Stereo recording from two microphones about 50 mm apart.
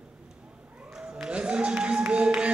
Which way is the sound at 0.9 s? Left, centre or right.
Centre.